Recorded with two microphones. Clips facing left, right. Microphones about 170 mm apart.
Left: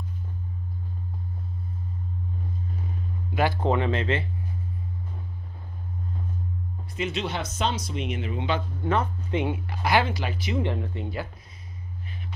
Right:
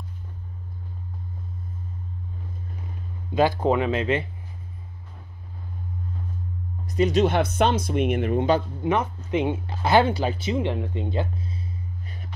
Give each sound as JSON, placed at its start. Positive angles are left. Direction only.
{"t": 3.3, "sound": "speech", "side_deg": -15}
{"t": 6.9, "sound": "speech", "side_deg": -40}
{"t": 8.8, "sound": "speech", "side_deg": -15}